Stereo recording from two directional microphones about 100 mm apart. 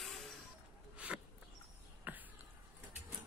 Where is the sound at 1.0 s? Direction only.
10° right (ahead or behind).